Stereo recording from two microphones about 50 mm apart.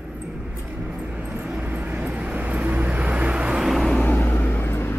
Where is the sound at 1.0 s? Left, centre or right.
Right.